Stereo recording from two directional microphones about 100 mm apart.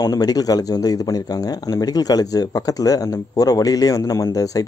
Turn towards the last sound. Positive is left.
turn(degrees=35)  # may be behind; listen again after turning